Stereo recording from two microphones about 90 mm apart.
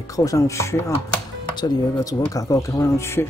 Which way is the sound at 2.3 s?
40° left (ahead or behind).